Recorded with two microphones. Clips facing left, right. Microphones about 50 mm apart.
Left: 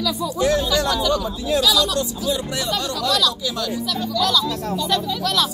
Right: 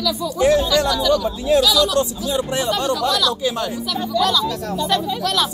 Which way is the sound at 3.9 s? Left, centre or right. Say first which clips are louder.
Right 2 dB; right.